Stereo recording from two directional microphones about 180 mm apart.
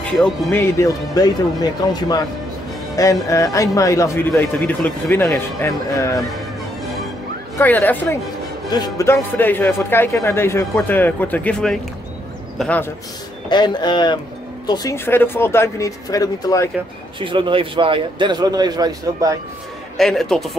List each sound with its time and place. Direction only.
0.0 s speech: 5° left (ahead or behind)
7.5 s speech: 10° left (ahead or behind)
8.6 s speech: 20° left (ahead or behind)
13.5 s speech: 25° left (ahead or behind)
17.2 s a man's voice: 30° right (ahead or behind)
20.0 s speech: centre (ahead or behind)